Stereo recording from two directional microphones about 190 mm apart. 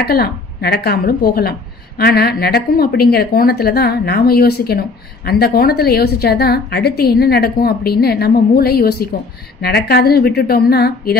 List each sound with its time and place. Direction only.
0.0 s speech: 55° left (ahead or behind)